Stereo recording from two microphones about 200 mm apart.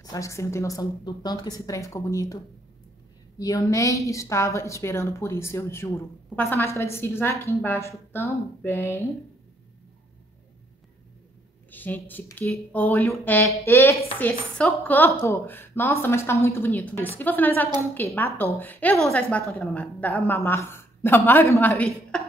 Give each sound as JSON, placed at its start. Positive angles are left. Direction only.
{"t": 0.0, "sound": "a woman's voice", "side_deg": 15}
{"t": 3.3, "sound": "a woman's voice", "side_deg": 15}
{"t": 11.7, "sound": "a woman's voice", "side_deg": 10}
{"t": 22.1, "sound": "beatboxing", "side_deg": 5}